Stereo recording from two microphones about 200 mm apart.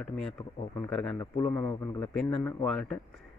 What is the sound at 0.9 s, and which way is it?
Speech, 5° left (ahead or behind).